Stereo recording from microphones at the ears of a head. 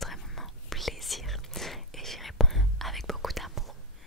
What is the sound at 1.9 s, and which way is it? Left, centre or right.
Whispering, centre.